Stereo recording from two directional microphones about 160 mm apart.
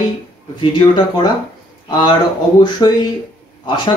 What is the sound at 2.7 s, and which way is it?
Speech, 25° left (ahead or behind).